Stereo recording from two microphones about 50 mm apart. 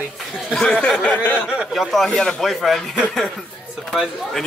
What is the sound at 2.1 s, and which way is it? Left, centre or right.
Speech, centre.